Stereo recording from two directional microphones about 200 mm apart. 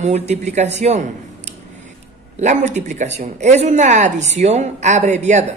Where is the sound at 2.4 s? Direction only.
35° right (ahead or behind).